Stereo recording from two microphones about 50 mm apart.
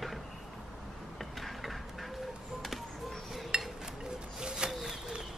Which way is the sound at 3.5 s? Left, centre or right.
Centre.